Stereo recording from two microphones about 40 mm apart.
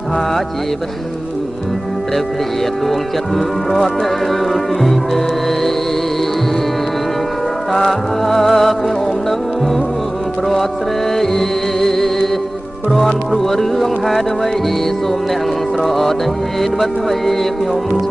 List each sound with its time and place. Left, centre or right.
2.9 s music: centre
7.7 s music: centre
11.1 s music: centre
15.8 s music: centre